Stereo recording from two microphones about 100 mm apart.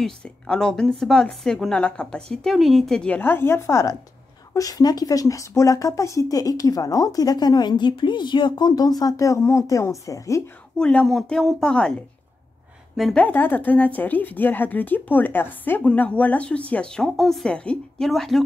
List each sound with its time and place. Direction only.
0.0 s speech: 10° left (ahead or behind)
3.2 s speech: 25° left (ahead or behind)
10.8 s speech: 10° left (ahead or behind)
13.1 s speech: 15° left (ahead or behind)